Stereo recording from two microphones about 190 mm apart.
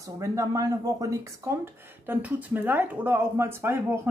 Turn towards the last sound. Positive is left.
turn(degrees=-10)  # may be behind; listen again after turning